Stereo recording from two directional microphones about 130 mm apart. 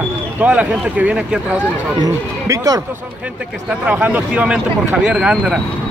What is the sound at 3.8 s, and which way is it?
A man's voice, 10° right (ahead or behind).